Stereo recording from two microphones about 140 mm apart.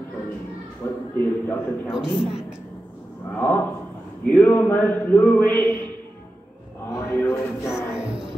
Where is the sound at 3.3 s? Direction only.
10° left (ahead or behind).